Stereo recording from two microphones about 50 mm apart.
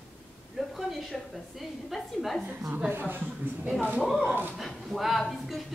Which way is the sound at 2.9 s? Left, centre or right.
Right.